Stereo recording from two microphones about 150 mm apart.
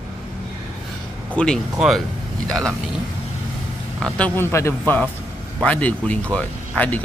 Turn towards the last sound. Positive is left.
turn(degrees=10)  # may be behind; listen again after turning